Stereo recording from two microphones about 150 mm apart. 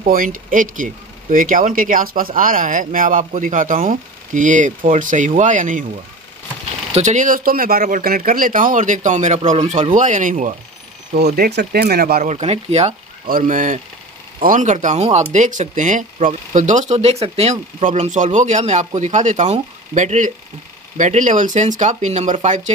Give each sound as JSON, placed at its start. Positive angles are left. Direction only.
{"t": 0.0, "sound": "speech", "side_deg": -65}
{"t": 6.9, "sound": "speech", "side_deg": -50}
{"t": 8.3, "sound": "speech", "side_deg": -65}
{"t": 11.1, "sound": "speech", "side_deg": -90}
{"t": 12.2, "sound": "speech", "side_deg": -50}
{"t": 13.3, "sound": "speech", "side_deg": -60}